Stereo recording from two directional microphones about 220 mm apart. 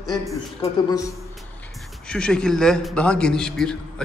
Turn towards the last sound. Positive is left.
turn(degrees=5)  # may be behind; listen again after turning